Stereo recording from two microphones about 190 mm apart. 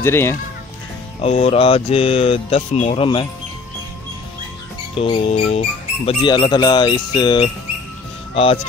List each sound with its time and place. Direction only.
0.0 s speech: 15° left (ahead or behind)
1.2 s speech: 30° left (ahead or behind)
4.9 s speech: 30° left (ahead or behind)